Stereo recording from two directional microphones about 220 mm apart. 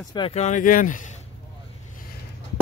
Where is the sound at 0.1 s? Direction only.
25° left (ahead or behind).